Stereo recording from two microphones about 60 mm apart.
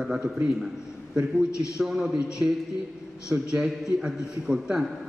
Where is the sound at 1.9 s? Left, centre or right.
Centre.